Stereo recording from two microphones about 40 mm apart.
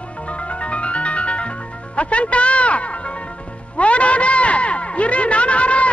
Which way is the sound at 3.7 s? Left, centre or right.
Left.